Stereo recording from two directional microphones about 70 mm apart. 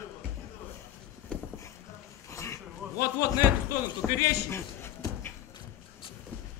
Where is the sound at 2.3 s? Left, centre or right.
Left.